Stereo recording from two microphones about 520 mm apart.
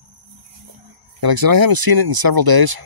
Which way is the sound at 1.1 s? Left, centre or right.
Right.